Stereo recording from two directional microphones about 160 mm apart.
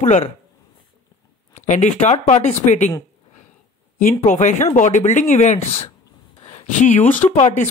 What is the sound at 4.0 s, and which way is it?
Speech, 50° left (ahead or behind).